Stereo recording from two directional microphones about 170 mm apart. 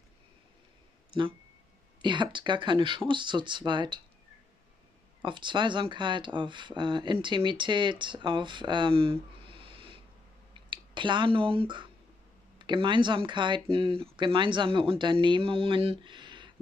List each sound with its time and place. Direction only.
2.0 s speech: 25° right (ahead or behind)
5.2 s speech: 30° right (ahead or behind)